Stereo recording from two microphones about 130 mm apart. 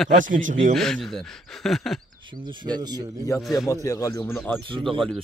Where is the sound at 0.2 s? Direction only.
85° right.